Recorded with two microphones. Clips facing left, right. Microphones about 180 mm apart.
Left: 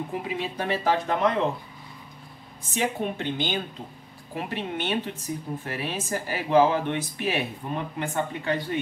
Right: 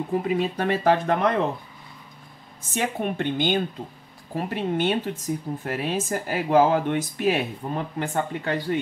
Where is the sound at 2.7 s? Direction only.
55° right (ahead or behind).